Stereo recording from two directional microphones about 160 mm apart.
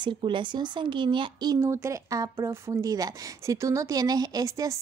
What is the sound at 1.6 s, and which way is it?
Speech, 15° right (ahead or behind).